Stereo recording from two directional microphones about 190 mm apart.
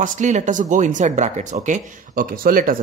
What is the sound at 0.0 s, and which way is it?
Speech, 40° right (ahead or behind).